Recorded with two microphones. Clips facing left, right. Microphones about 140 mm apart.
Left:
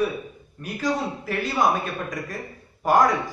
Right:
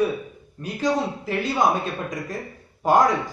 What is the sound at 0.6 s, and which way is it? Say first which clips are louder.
A man's voice: right 2 dB; 20° right (ahead or behind).